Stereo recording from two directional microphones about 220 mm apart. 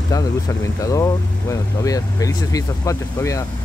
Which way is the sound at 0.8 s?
15° left (ahead or behind).